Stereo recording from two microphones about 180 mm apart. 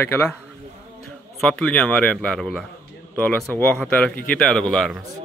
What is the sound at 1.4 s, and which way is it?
A man's voice, 5° left (ahead or behind).